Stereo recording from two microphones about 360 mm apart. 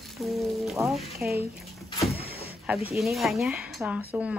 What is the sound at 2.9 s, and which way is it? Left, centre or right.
Speech, centre.